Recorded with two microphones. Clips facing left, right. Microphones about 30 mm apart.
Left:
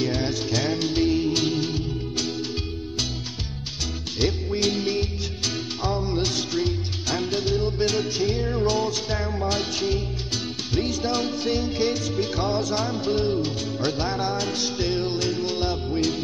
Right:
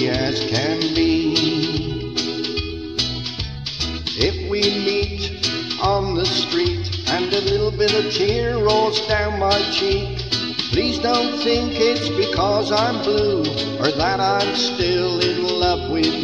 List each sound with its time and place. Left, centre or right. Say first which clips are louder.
0.0 s music: right 5 dB; right
4.2 s music: right 4 dB; right